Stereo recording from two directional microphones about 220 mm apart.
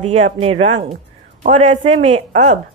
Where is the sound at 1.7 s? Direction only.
25° right (ahead or behind).